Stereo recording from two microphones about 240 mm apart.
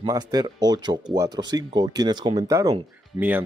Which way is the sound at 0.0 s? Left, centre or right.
Centre.